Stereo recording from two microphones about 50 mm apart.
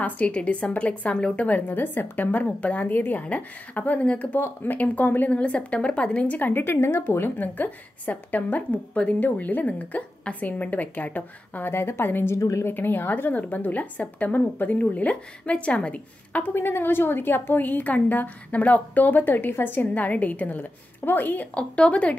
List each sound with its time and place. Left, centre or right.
0.0 s a woman's voice: left
1.7 s a woman's voice: left
2.6 s a woman's voice: left
5.3 s a woman's voice: left
6.3 s a woman's voice: left
7.3 s a woman's voice: left
11.7 s a woman's voice: left
12.4 s a woman's voice: left
12.6 s a woman's voice: left
16.4 s a woman's voice: left
21.5 s a woman's voice: left